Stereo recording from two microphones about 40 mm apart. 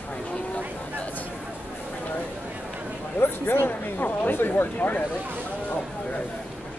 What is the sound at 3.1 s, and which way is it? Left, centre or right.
Speech, left.